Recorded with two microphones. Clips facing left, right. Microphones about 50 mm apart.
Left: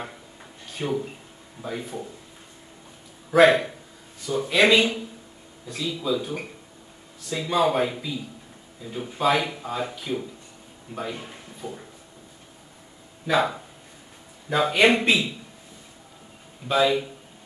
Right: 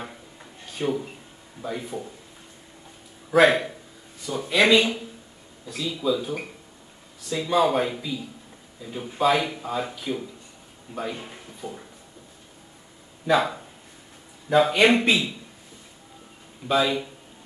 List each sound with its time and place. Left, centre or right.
0.0 s a sound: centre
1.6 s speech: centre
3.3 s speech: centre
7.4 s speech: centre
13.3 s speech: centre
16.6 s speech: centre